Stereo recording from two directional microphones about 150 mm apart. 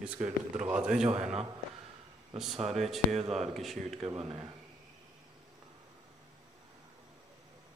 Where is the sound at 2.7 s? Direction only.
Centre (ahead or behind).